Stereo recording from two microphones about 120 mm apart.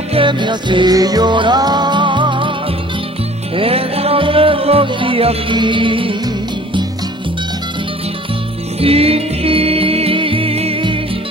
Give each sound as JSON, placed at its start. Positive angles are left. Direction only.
{"t": 0.1, "sound": "music", "side_deg": -45}
{"t": 3.5, "sound": "music", "side_deg": -55}
{"t": 8.7, "sound": "music", "side_deg": -55}